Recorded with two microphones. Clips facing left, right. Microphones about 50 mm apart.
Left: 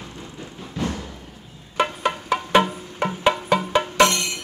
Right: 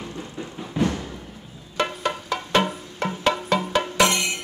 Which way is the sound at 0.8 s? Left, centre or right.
Right.